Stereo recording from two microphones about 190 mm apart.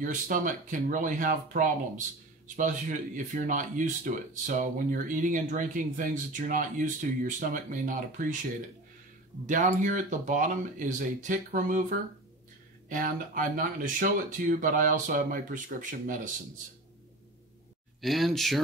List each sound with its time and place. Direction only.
0.0 s speech: 45° right (ahead or behind)
9.5 s speech: 40° right (ahead or behind)
12.8 s speech: 45° right (ahead or behind)
18.0 s speech: centre (ahead or behind)